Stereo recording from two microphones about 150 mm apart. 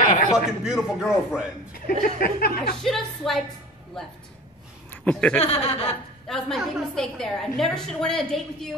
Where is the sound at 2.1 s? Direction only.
80° left.